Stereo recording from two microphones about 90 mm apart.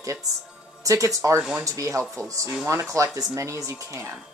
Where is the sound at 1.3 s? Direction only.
5° right (ahead or behind).